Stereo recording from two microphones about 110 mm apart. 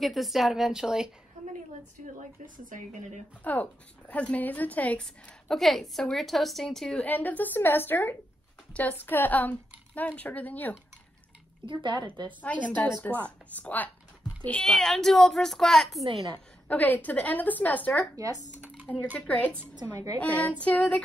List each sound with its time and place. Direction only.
0.0 s a woman's voice: centre (ahead or behind)
3.4 s a woman's voice: 15° left (ahead or behind)
11.6 s speech: 50° right (ahead or behind)
12.4 s a woman's voice: 15° left (ahead or behind)
16.6 s a woman's voice: 15° left (ahead or behind)
18.1 s speech: 35° right (ahead or behind)
18.8 s a sound: 15° left (ahead or behind)
19.1 s a woman's voice: 10° left (ahead or behind)